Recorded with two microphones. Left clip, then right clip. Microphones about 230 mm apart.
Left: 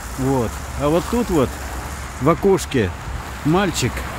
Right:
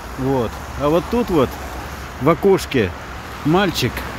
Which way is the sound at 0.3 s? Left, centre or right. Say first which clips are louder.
Right 1 dB; centre.